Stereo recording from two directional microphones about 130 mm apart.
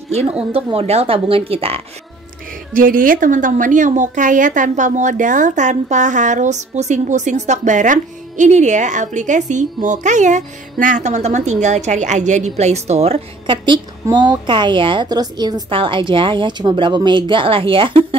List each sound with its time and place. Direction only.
0.7 s speech: 50° right (ahead or behind)
2.7 s a woman's voice: 90° right; by 13.6 s 50° right (ahead or behind)
14.1 s a woman's voice: 35° right (ahead or behind)